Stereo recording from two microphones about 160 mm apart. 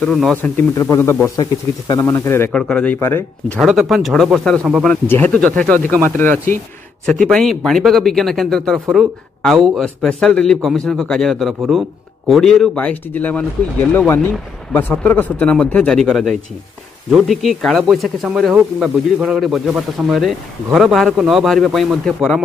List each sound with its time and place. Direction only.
0.0 s speech: 5° left (ahead or behind)
3.5 s a man's voice: centre (ahead or behind)